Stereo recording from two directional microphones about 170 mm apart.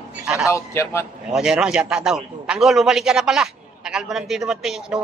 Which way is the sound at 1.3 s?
5° right (ahead or behind).